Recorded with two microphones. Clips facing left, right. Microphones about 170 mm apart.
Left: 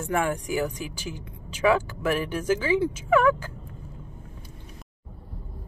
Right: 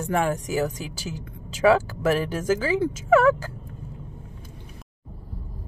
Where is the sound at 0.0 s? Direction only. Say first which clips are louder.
Right 2 dB; 35° right (ahead or behind).